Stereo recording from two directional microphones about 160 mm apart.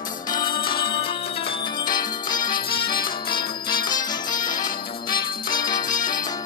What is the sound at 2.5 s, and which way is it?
Music, 65° left (ahead or behind).